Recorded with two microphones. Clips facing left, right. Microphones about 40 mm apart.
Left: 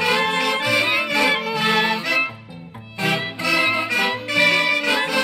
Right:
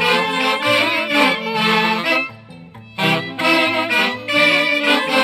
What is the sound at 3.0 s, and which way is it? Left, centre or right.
Music, right.